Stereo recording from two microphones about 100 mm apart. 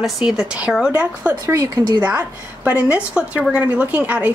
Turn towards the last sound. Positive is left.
turn(degrees=-15)  # may be behind; listen again after turning